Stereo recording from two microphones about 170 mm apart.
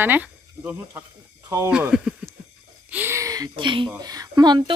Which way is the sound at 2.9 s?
10° right (ahead or behind).